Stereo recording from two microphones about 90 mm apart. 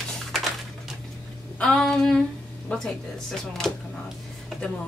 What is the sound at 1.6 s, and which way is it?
Speech, 10° left (ahead or behind).